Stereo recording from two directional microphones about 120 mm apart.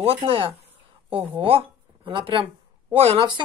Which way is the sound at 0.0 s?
50° right (ahead or behind).